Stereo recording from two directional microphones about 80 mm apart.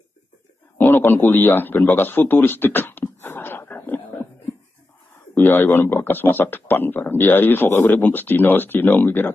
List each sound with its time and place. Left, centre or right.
0.9 s speech: left
2.0 s a sound: left
5.3 s speech: left